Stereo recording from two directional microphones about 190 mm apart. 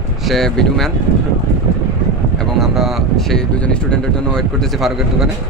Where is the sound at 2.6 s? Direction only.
Centre (ahead or behind).